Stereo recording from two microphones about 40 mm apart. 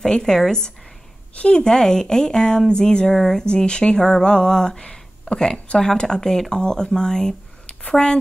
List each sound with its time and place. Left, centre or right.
0.0 s speech: centre
1.3 s a woman's voice: left
1.6 s speech: centre
3.2 s speech: centre
3.4 s speech: left